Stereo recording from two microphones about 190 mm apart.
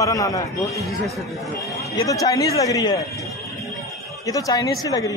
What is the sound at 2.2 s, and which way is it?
Speech, 20° left (ahead or behind).